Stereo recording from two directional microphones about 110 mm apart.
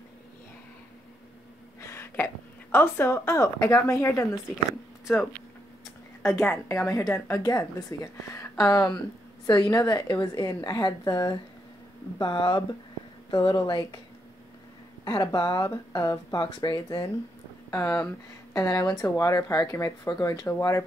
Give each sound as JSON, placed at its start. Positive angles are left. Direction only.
{"t": 1.8, "sound": "a woman's voice", "side_deg": 20}
{"t": 6.2, "sound": "a woman's voice", "side_deg": 25}
{"t": 12.2, "sound": "speech", "side_deg": 50}
{"t": 15.0, "sound": "speech", "side_deg": 35}
{"t": 17.6, "sound": "speech", "side_deg": 10}
{"t": 18.5, "sound": "speech", "side_deg": 40}
{"t": 20.4, "sound": "a woman's voice", "side_deg": 25}